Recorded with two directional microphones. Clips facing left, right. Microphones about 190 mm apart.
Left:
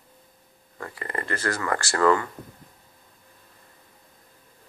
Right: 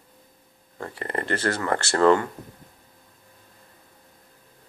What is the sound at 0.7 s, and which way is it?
Speech, 30° right (ahead or behind).